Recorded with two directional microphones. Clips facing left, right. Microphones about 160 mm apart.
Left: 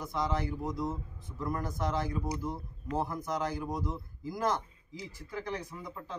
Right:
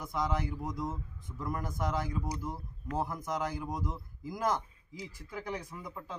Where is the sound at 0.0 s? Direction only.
15° right (ahead or behind).